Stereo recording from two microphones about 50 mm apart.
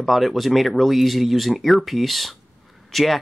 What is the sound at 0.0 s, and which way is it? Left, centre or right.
Speech, centre.